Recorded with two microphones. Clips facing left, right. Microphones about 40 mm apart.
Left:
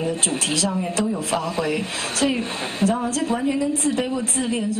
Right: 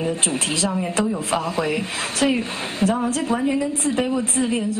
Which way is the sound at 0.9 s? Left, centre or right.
Right.